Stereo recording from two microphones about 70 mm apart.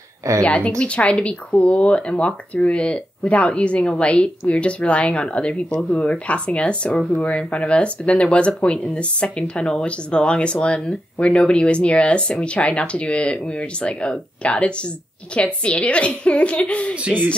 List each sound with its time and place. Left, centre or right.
0.4 s speech: centre
17.1 s music: centre